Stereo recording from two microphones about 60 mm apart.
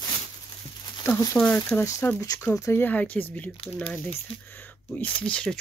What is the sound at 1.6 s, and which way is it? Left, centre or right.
Speech, left.